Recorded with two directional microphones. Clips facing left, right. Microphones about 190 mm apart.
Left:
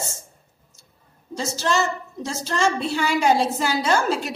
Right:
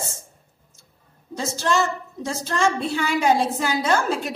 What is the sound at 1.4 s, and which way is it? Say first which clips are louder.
A woman's voice: right 1 dB; 55° right (ahead or behind).